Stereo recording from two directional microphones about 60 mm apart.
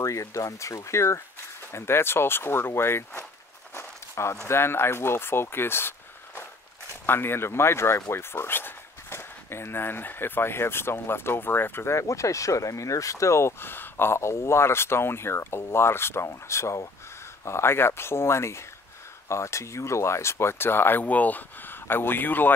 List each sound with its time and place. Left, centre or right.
0.0 s speech: left
3.7 s walk: left
4.5 s speech: left